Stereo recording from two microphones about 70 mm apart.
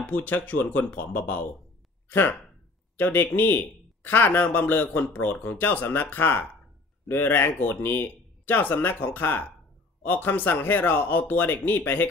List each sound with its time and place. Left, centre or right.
0.0 s speech: left